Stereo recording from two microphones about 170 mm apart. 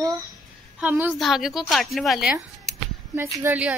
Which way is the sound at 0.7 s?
5° right (ahead or behind).